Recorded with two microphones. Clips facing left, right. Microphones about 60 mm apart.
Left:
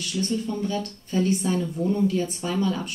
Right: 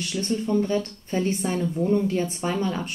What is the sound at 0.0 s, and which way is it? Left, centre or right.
A woman's voice, right.